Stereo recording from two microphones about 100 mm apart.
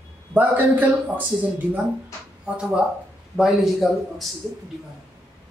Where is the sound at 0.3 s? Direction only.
15° right (ahead or behind); by 4.3 s centre (ahead or behind).